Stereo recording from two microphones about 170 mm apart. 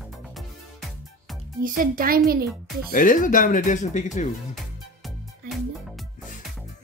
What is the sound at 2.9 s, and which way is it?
Speech, 50° left (ahead or behind).